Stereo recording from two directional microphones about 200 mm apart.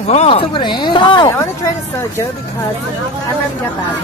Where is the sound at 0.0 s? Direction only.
30° left (ahead or behind); by 2.2 s 15° left (ahead or behind).